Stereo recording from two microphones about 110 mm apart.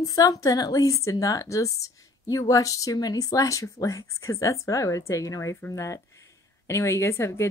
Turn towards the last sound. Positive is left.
turn(degrees=25)  # may be behind; listen again after turning